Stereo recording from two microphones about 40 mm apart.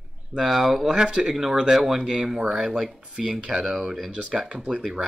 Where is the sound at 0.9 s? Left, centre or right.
Right.